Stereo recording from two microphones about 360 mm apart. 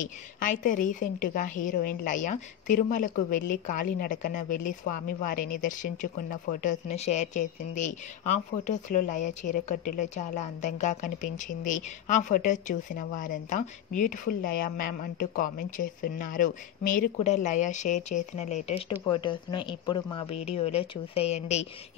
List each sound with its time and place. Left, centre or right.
0.0 s a woman's voice: left